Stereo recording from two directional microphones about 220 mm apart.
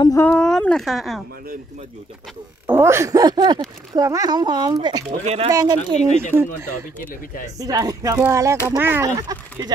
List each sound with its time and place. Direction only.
0.0 s speech: 15° left (ahead or behind)
0.4 s speech: 5° left (ahead or behind)
2.6 s speech: 10° right (ahead or behind)
5.2 s speech: 30° right (ahead or behind)
5.5 s speech: 15° right (ahead or behind)
7.5 s speech: 15° right (ahead or behind)